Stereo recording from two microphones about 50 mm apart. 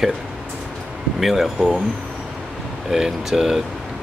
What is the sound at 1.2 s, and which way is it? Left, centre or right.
Speech, centre.